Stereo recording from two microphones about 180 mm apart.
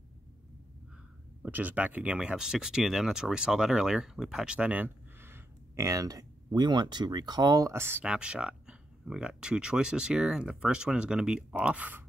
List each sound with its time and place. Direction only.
1.4 s speech: 10° right (ahead or behind)